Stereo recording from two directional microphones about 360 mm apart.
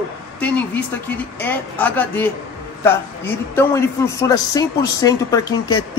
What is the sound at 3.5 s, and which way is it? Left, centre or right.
Speech, centre.